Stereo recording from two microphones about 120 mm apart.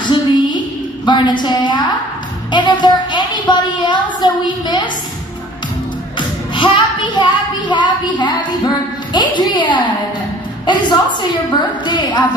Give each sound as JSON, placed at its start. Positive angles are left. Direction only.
{"t": 0.0, "sound": "a sound", "side_deg": 40}
{"t": 1.0, "sound": "a woman's voice", "side_deg": 40}
{"t": 6.1, "sound": "a woman's voice", "side_deg": 40}